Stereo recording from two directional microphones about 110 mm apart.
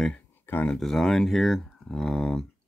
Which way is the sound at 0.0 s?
15° left (ahead or behind).